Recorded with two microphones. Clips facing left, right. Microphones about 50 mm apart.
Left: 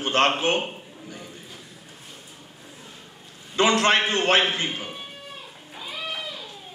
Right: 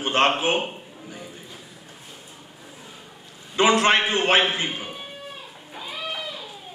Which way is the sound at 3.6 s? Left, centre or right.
Centre.